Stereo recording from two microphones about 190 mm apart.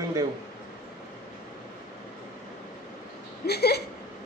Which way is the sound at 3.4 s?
60° left (ahead or behind).